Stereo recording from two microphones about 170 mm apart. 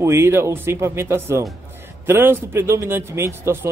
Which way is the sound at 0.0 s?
15° right (ahead or behind).